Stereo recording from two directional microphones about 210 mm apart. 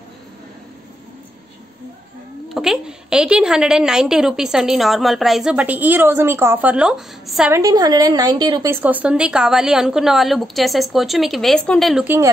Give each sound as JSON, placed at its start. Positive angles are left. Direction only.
{"t": 2.5, "sound": "a woman's voice", "side_deg": 0}
{"t": 7.5, "sound": "a woman's voice", "side_deg": -15}
{"t": 8.8, "sound": "a woman's voice", "side_deg": -5}